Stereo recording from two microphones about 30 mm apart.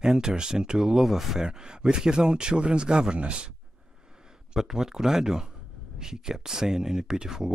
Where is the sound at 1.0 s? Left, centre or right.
Centre.